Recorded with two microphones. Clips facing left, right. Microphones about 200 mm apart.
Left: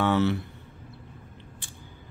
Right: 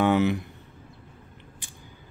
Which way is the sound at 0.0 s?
15° right (ahead or behind).